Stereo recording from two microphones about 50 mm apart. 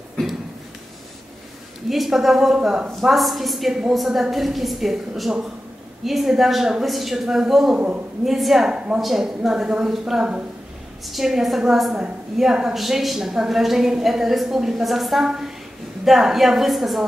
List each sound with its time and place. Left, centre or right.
0.2 s a sound: centre
1.9 s a woman's voice: centre
7.7 s a man's voice: right
8.3 s a woman's voice: centre
8.6 s a woman's voice: centre
9.0 s a woman's voice: centre